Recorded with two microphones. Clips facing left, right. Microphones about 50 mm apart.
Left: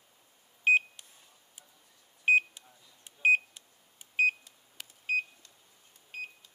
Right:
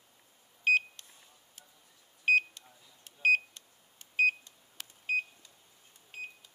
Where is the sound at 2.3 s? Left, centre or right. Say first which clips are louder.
Left 2 dB; centre.